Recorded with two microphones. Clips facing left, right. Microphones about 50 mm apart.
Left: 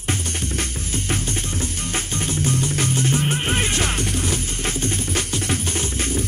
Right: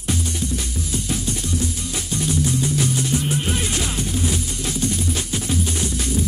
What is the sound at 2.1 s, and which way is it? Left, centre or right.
Music, left.